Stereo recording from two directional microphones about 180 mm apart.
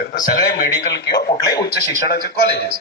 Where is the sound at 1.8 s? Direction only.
65° left (ahead or behind).